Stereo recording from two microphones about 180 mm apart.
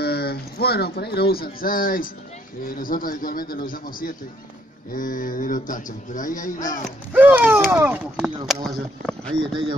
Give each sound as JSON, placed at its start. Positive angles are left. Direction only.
{"t": 0.0, "sound": "speech", "side_deg": 60}
{"t": 7.1, "sound": "speech", "side_deg": -10}
{"t": 8.6, "sound": "speech", "side_deg": 5}
{"t": 9.4, "sound": "speech", "side_deg": -30}